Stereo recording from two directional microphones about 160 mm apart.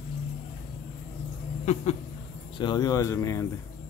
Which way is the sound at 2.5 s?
30° left (ahead or behind).